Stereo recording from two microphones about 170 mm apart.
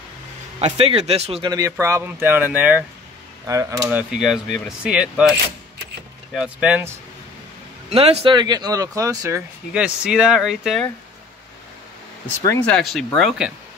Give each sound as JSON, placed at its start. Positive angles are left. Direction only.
{"t": 0.6, "sound": "a man's voice", "side_deg": -35}
{"t": 1.5, "sound": "speech", "side_deg": -20}
{"t": 3.4, "sound": "speech", "side_deg": -20}
{"t": 3.8, "sound": "speech", "side_deg": -5}
{"t": 6.3, "sound": "speech", "side_deg": -5}
{"t": 7.9, "sound": "speech", "side_deg": -35}
{"t": 9.7, "sound": "speech", "side_deg": -5}
{"t": 12.4, "sound": "speech", "side_deg": 5}